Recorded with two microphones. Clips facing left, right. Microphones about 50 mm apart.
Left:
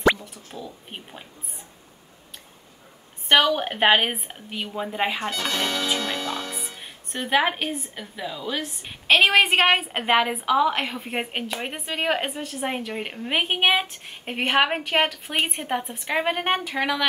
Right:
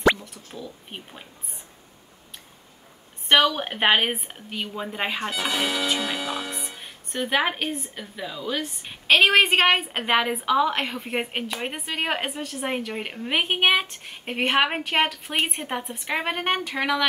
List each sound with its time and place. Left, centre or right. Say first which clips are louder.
0.2 s speech: left 1 dB; centre
0.8 s a woman's voice: left 1 dB; centre
3.3 s a woman's voice: left 1 dB; centre
5.2 s a woman's voice: even; centre